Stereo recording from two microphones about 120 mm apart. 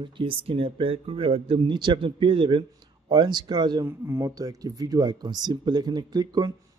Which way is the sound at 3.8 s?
20° right (ahead or behind).